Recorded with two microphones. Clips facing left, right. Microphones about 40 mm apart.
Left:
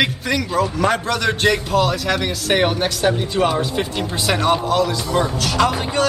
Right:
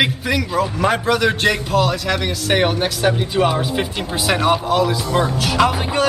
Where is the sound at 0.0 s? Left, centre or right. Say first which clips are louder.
Right 1 dB; centre.